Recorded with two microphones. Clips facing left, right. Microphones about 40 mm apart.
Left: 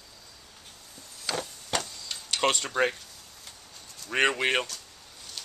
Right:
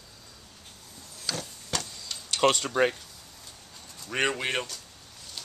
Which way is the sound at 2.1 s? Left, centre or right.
Centre.